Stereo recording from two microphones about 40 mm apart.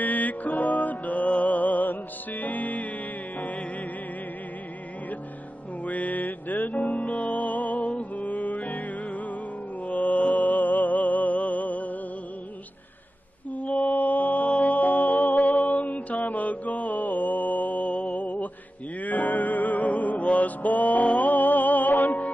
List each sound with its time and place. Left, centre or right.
0.0 s music: left
5.9 s music: left
9.8 s mantra: left
13.5 s mantra: left
14.5 s music: left